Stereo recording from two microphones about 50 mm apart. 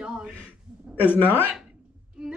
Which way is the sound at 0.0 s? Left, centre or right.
Centre.